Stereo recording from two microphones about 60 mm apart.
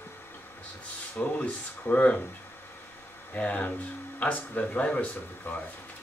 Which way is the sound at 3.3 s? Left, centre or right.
Left.